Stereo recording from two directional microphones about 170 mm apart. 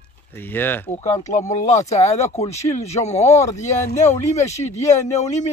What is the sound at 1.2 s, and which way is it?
Speech, 45° left (ahead or behind).